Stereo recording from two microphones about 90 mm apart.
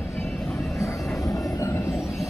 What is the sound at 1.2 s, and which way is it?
Train, 35° left (ahead or behind).